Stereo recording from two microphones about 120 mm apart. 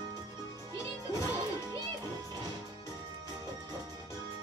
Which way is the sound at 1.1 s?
25° left (ahead or behind).